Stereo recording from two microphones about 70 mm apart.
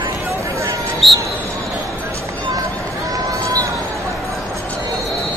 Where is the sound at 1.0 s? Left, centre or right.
Centre.